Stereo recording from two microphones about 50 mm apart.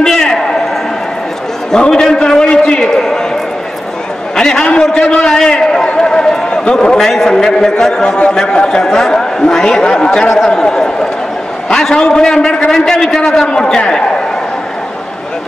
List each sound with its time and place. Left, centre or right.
0.0 s a sound: centre
1.7 s a man's voice: centre
4.4 s a man's voice: centre